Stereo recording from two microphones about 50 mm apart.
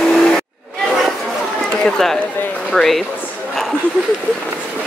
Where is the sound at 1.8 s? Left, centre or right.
Centre.